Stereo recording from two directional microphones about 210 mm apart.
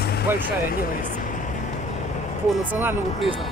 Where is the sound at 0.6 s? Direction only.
40° left (ahead or behind).